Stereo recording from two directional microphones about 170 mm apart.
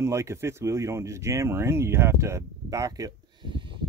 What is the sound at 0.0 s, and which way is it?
Speech, 15° right (ahead or behind).